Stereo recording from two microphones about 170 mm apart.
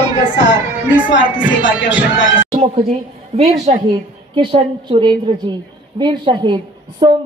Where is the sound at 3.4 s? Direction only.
40° right (ahead or behind).